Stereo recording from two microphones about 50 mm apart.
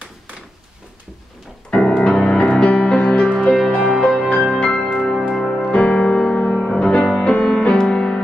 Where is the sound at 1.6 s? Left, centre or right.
Centre.